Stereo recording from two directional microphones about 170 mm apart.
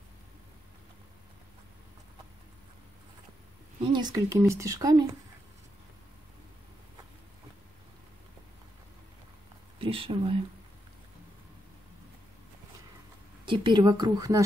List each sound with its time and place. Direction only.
3.9 s speech: 20° right (ahead or behind)
9.8 s speech: 30° right (ahead or behind)
13.5 s speech: 25° right (ahead or behind)